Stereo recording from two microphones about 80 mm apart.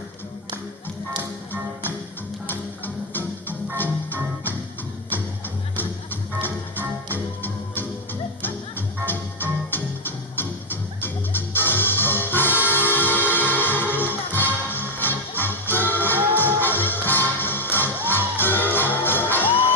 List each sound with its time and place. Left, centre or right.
3.1 s music: left
6.4 s music: left
9.0 s music: left